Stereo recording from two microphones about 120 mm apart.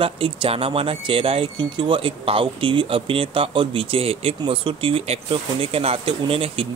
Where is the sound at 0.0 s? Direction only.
50° right (ahead or behind).